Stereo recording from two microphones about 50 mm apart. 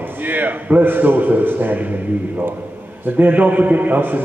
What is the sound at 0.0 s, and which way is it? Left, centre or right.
A man's voice, right.